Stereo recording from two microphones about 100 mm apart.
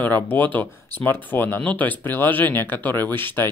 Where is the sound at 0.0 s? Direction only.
15° left (ahead or behind).